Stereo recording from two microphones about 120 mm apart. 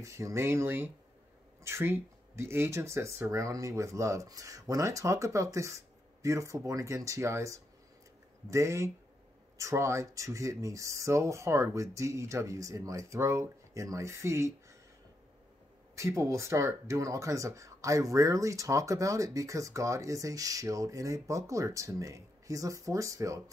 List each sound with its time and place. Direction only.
0.0 s speech: 25° right (ahead or behind)
15.9 s speech: 25° right (ahead or behind)